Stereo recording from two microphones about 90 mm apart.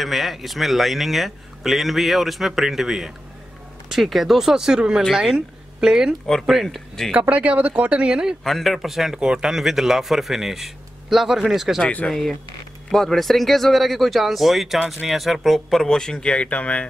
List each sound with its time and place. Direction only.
0.0 s speech: centre (ahead or behind)
7.2 s speech: 15° right (ahead or behind)
8.5 s speech: centre (ahead or behind)
11.8 s speech: 15° left (ahead or behind)
12.1 s speech: 5° left (ahead or behind)